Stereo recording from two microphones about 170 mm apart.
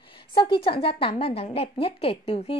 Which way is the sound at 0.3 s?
30° left (ahead or behind).